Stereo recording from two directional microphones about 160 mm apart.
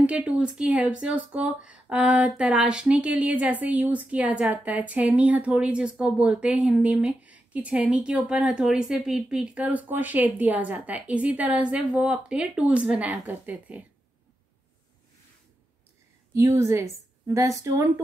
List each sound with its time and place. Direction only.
0.0 s a woman's voice: 5° right (ahead or behind)
16.3 s a woman's voice: 15° right (ahead or behind)